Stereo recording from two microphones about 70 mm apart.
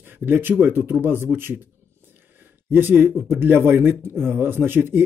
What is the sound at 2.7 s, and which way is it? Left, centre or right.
Speech, right.